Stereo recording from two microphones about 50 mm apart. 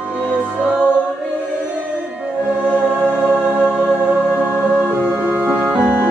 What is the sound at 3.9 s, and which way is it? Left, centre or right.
Music, centre.